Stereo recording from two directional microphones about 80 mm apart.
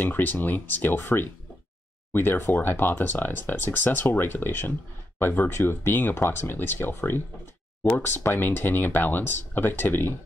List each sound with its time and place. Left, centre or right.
0.0 s speech: left